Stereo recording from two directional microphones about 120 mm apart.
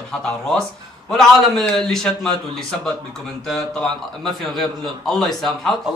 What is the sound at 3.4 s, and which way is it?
A man's voice, 5° left (ahead or behind).